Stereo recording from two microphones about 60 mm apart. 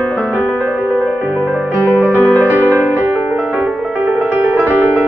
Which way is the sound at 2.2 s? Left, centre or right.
Left.